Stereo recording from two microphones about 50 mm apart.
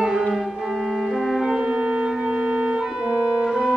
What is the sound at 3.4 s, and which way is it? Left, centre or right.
Organ, centre.